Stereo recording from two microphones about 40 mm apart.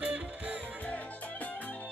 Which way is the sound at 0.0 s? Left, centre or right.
Right.